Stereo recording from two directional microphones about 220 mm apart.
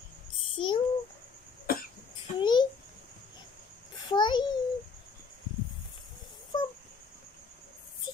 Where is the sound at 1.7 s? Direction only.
40° left (ahead or behind).